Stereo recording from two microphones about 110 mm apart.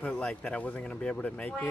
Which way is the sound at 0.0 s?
10° left (ahead or behind).